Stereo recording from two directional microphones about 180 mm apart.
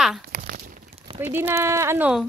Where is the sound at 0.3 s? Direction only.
55° right (ahead or behind).